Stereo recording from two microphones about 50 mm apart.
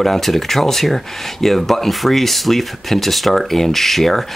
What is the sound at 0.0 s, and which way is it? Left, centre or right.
Speech, centre.